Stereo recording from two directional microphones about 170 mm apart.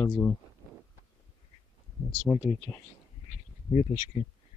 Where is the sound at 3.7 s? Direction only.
35° left (ahead or behind).